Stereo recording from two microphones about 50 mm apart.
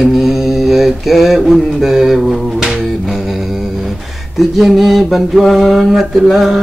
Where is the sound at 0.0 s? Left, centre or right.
Centre.